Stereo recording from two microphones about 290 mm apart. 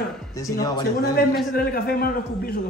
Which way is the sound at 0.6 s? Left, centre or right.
Centre.